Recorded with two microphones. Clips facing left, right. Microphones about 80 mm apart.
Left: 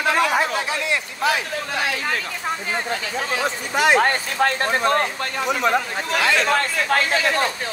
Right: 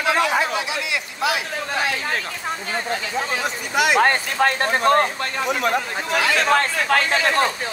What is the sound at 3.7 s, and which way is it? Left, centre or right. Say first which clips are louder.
Speech: left 1 dB; left.